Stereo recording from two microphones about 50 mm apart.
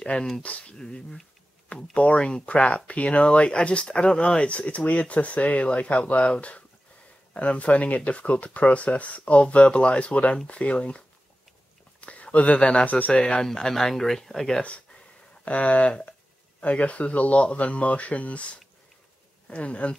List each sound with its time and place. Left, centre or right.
0.0 s speech: centre
12.0 s speech: left
13.2 s speech: centre
14.6 s a sound: left
16.6 s speech: left